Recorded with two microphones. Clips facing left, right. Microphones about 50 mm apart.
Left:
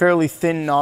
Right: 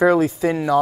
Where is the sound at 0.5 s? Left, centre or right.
Left.